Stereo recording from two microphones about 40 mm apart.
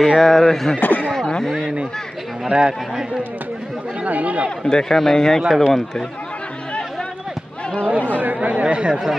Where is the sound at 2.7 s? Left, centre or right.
Centre.